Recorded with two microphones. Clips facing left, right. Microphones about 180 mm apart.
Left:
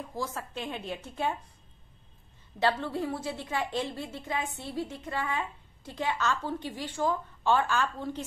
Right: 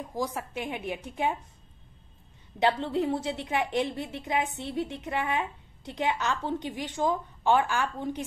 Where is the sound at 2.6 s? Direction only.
20° right (ahead or behind).